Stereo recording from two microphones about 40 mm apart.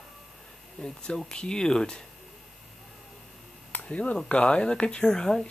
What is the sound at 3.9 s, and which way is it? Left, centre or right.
Speech, left.